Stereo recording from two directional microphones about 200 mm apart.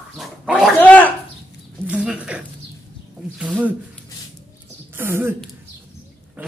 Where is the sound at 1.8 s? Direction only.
5° right (ahead or behind).